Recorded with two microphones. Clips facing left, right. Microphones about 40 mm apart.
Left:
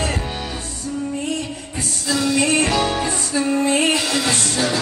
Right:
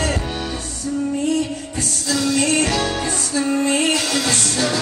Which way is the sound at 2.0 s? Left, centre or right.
Centre.